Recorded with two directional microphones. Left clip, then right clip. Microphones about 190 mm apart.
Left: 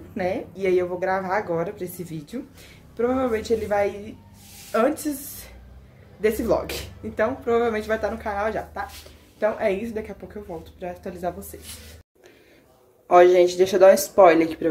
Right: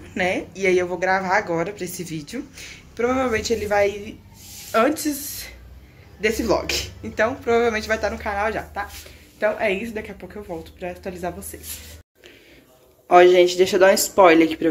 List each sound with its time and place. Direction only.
0.1 s speech: 5° left (ahead or behind)
13.1 s speech: 10° left (ahead or behind)